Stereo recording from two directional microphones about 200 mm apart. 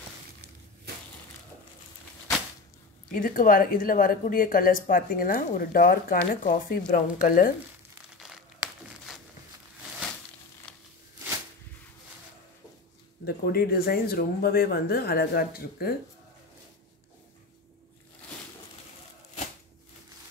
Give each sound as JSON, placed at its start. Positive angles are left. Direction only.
{"t": 3.1, "sound": "a woman's voice", "side_deg": 45}
{"t": 10.7, "sound": "a sound", "side_deg": 5}
{"t": 13.2, "sound": "a woman's voice", "side_deg": 50}